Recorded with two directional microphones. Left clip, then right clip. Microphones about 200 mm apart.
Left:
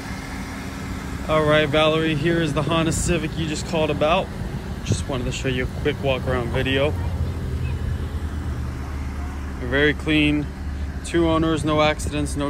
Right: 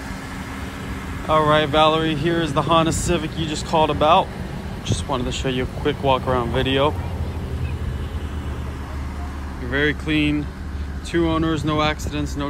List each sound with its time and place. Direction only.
1.2 s speech: 10° right (ahead or behind)
9.7 s speech: centre (ahead or behind)